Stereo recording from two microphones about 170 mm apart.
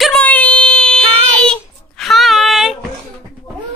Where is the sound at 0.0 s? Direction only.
5° left (ahead or behind).